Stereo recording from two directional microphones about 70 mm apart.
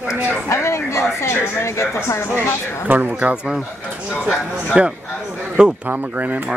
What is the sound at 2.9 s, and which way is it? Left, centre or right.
Speech, right.